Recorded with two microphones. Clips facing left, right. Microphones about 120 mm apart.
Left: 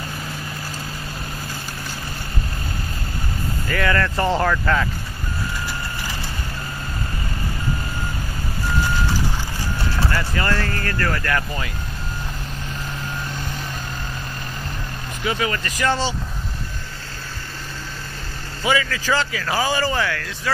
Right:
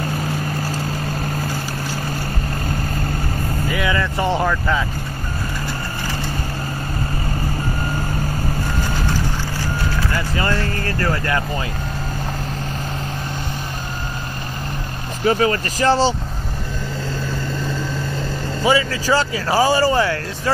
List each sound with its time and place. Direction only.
3.6 s speech: 15° right (ahead or behind)
10.1 s speech: 20° right (ahead or behind)
10.6 s speech: 40° left (ahead or behind)
10.9 s speech: 25° right (ahead or behind)
15.2 s speech: 35° right (ahead or behind)
18.6 s speech: 30° right (ahead or behind)